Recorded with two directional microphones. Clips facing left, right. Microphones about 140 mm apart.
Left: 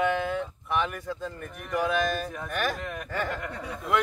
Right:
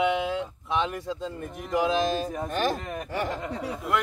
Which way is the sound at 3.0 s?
15° right (ahead or behind).